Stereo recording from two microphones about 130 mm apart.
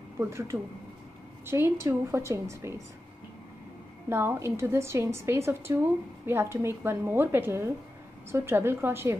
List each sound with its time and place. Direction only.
0.2 s a woman's voice: 20° right (ahead or behind)
4.1 s a woman's voice: 20° right (ahead or behind)